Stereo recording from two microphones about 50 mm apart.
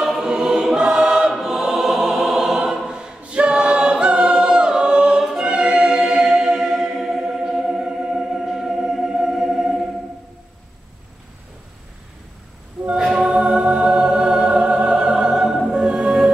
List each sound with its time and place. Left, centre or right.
0.2 s choir: centre
12.9 s choir: centre
15.7 s music: centre